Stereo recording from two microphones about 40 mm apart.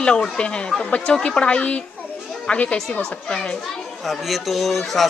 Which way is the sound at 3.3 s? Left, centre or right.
Centre.